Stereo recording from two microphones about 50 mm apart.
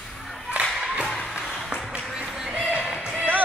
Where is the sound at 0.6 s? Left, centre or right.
Centre.